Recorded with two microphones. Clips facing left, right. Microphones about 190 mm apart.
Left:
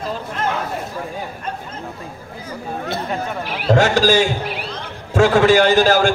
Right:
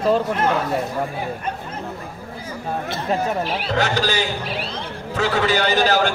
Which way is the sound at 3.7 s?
50° left (ahead or behind).